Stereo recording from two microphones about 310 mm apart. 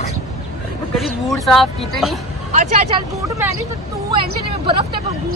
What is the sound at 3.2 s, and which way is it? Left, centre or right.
Speech, centre.